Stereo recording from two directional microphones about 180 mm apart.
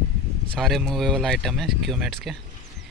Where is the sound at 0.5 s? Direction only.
Centre (ahead or behind).